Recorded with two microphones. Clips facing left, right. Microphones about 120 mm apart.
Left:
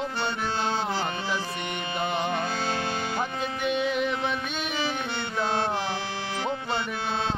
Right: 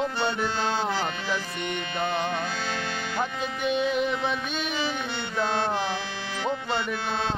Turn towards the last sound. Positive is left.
turn(degrees=10)  # may be behind; listen again after turning